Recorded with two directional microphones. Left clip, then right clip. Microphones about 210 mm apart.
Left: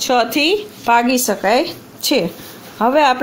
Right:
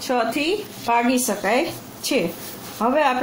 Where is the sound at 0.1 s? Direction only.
45° left (ahead or behind).